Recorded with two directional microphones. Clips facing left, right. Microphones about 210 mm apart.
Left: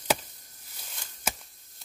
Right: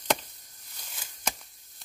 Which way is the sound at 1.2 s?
5° left (ahead or behind).